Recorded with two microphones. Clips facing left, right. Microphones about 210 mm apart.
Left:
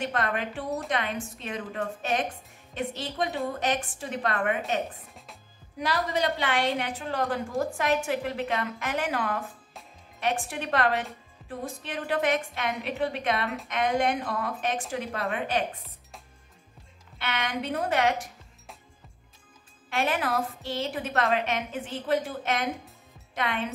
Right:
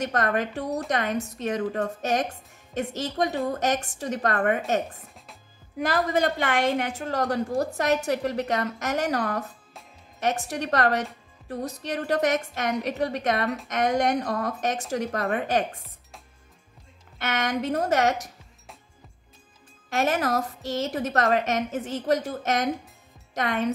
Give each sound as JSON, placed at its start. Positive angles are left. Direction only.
{"t": 0.0, "sound": "a woman's voice", "side_deg": -40}
{"t": 5.1, "sound": "music", "side_deg": 0}
{"t": 5.8, "sound": "a woman's voice", "side_deg": -50}
{"t": 17.2, "sound": "a woman's voice", "side_deg": -45}
{"t": 19.9, "sound": "a woman's voice", "side_deg": -45}